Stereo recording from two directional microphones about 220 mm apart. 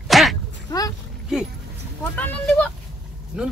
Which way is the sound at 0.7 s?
15° left (ahead or behind).